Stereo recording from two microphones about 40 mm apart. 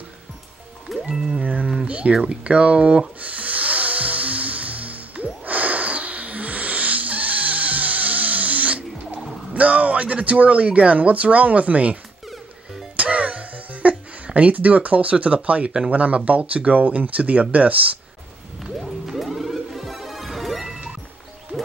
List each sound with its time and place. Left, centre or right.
1.0 s music: centre
1.4 s a sound: right
1.9 s speech: right
3.2 s music: right
11.0 s speech: right
12.9 s music: right
15.9 s speech: right
18.6 s music: centre
21.5 s music: right